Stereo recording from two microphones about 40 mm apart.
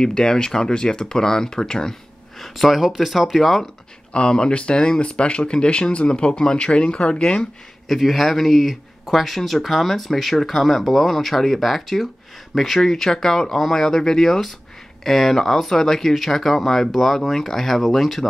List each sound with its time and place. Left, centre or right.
0.0 s speech: centre
2.3 s speech: centre
4.1 s speech: left
7.9 s speech: centre